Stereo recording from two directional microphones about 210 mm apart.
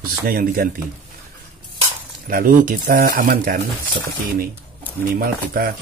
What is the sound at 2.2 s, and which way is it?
Speech, 40° right (ahead or behind).